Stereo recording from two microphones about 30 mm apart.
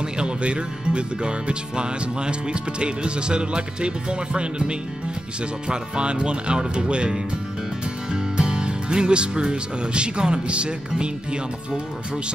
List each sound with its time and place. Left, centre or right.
0.2 s speech: right